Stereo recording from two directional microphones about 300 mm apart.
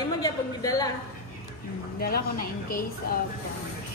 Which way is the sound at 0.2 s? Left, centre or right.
Centre.